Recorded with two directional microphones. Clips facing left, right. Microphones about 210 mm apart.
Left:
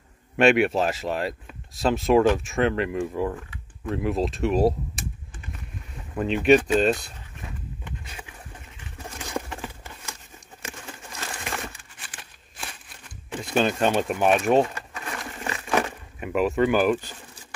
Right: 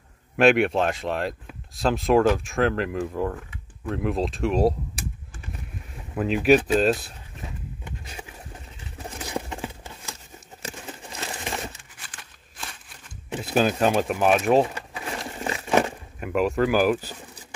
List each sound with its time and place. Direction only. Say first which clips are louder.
0.4 s speech: even; centre (ahead or behind)
6.1 s speech: even; 5° right (ahead or behind)
8.9 s bird: right 1 dB; 15° right (ahead or behind)
10.9 s crushing: right 2 dB; 20° right (ahead or behind)
13.4 s speech: right 1 dB; 5° right (ahead or behind)
15.0 s a sound: right 3 dB; 25° right (ahead or behind)
16.2 s speech: even; centre (ahead or behind)